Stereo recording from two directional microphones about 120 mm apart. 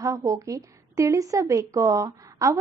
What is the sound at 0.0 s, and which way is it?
A woman's voice, 25° right (ahead or behind).